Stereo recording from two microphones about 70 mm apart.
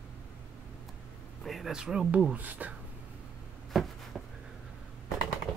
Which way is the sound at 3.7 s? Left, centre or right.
Centre.